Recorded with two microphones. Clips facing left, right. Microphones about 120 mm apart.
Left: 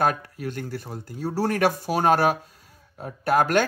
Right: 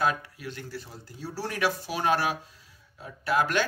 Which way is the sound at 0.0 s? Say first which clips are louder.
Left 4 dB; 50° left (ahead or behind).